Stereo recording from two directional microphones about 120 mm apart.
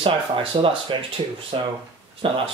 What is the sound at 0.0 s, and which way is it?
Speech, 50° right (ahead or behind).